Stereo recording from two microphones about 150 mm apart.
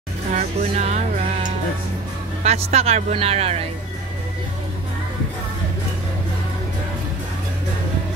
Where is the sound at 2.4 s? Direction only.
45° right (ahead or behind).